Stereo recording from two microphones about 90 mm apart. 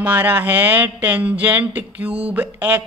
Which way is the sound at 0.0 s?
20° right (ahead or behind).